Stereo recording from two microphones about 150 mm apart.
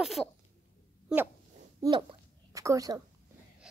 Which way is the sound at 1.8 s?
30° right (ahead or behind).